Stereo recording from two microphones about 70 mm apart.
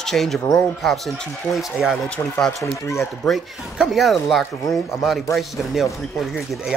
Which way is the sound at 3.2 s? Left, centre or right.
Centre.